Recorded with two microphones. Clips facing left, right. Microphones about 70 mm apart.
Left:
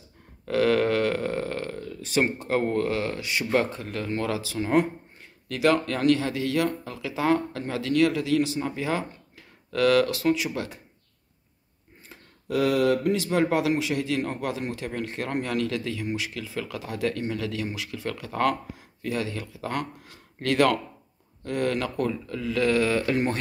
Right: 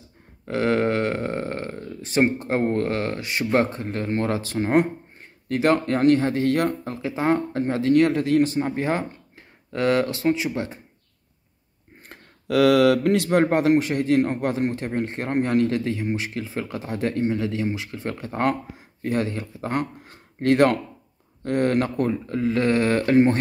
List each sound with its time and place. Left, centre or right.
0.5 s speech: right
9.7 s speech: right
12.1 s speech: right
13.3 s speech: right